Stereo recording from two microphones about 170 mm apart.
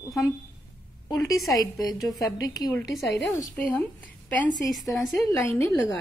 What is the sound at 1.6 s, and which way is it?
A woman's voice, 25° left (ahead or behind).